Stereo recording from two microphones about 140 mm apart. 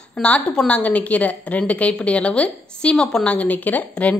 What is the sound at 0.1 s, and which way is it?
A woman's voice, 10° left (ahead or behind).